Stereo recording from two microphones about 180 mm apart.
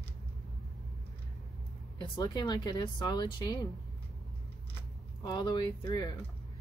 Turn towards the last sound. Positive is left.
turn(degrees=20)  # may be behind; listen again after turning